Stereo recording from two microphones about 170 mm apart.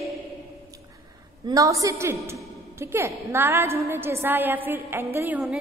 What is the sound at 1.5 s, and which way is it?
A woman's voice, 20° right (ahead or behind).